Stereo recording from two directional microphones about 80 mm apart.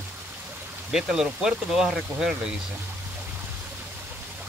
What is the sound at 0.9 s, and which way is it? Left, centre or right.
Speech, centre.